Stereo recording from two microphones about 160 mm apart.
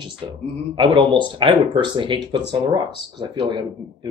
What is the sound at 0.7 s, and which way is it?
Speech, 30° right (ahead or behind).